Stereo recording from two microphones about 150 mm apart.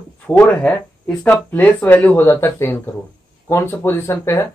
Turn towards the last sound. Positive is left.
turn(degrees=15)  # may be behind; listen again after turning